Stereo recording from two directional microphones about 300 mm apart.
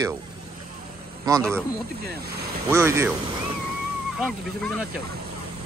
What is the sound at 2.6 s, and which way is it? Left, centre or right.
Speech, centre.